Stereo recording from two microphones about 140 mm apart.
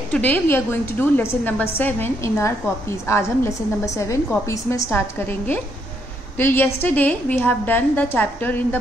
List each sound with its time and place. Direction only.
0.1 s a woman's voice: 10° left (ahead or behind)